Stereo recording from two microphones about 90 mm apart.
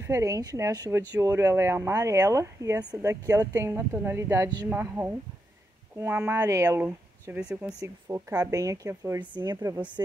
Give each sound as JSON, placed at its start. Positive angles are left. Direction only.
{"t": 0.0, "sound": "speech", "side_deg": -35}
{"t": 6.4, "sound": "speech", "side_deg": -35}
{"t": 7.3, "sound": "speech", "side_deg": -10}
{"t": 7.8, "sound": "speech", "side_deg": -40}
{"t": 9.2, "sound": "speech", "side_deg": -60}
{"t": 9.5, "sound": "speech", "side_deg": -35}